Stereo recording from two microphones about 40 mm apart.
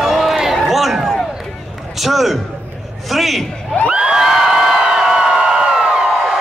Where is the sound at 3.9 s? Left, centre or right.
Right.